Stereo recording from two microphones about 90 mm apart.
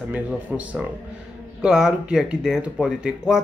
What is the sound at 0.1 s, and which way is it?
Speech, 15° right (ahead or behind).